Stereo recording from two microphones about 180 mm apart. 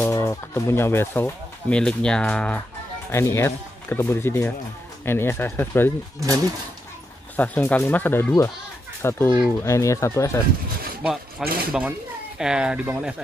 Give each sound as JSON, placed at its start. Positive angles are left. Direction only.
{"t": 0.0, "sound": "speech", "side_deg": 15}
{"t": 7.3, "sound": "speech", "side_deg": 10}
{"t": 11.0, "sound": "speech", "side_deg": -5}